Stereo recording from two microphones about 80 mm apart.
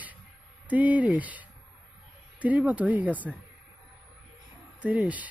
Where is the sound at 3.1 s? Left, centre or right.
Centre.